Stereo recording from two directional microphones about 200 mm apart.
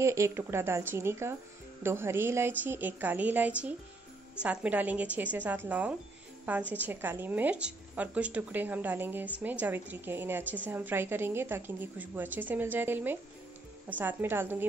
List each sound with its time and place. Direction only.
0.0 s a woman's voice: 15° right (ahead or behind)